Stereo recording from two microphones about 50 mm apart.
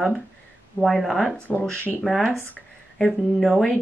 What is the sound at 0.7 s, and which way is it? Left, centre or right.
Speech, centre.